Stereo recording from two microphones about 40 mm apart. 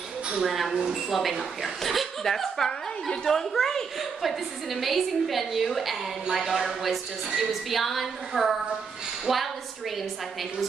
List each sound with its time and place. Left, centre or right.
0.4 s a woman's voice: centre
4.2 s a woman's voice: centre
9.2 s a sound: centre